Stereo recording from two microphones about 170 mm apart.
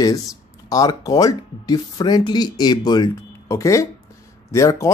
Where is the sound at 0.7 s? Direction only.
20° left (ahead or behind).